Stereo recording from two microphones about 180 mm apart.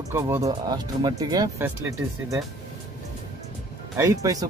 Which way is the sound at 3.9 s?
20° right (ahead or behind).